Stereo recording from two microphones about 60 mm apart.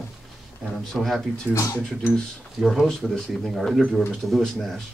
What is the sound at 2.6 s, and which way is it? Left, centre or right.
Speech, centre.